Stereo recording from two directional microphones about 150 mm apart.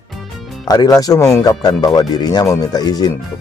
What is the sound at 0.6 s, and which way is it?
Speech, 25° left (ahead or behind).